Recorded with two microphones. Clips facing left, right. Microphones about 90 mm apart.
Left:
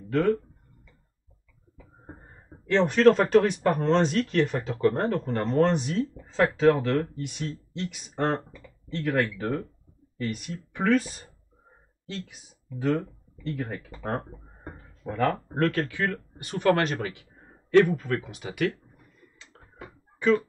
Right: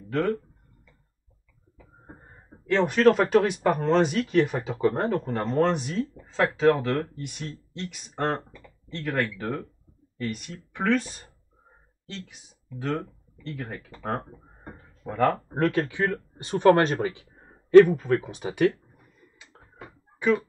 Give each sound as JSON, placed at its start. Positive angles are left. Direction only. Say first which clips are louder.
{"t": 0.1, "sound": "speech", "louder": "left 2 dB", "side_deg": 0}
{"t": 2.7, "sound": "speech", "louder": "left 1 dB", "side_deg": -5}
{"t": 12.6, "sound": "speech", "louder": "left 3 dB", "side_deg": 0}
{"t": 14.7, "sound": "a sound", "louder": "even", "side_deg": 0}
{"t": 15.5, "sound": "speech", "louder": "right 1 dB", "side_deg": -15}
{"t": 19.8, "sound": "a sound", "louder": "left 1 dB", "side_deg": -5}